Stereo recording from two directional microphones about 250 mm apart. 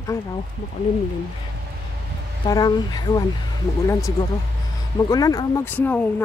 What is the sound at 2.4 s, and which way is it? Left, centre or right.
Speech, centre.